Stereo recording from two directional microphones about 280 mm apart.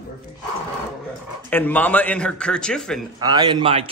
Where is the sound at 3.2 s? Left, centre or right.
Centre.